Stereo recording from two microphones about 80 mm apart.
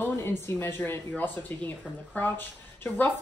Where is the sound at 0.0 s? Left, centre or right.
Left.